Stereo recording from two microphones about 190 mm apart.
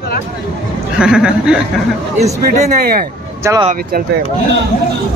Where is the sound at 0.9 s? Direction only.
5° right (ahead or behind).